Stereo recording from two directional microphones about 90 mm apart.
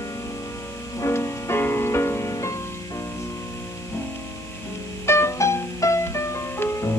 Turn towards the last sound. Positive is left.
turn(degrees=30)  # may be behind; listen again after turning